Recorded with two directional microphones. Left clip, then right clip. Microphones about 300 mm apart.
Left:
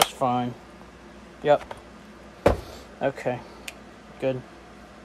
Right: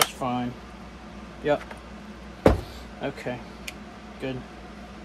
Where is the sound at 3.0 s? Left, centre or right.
Left.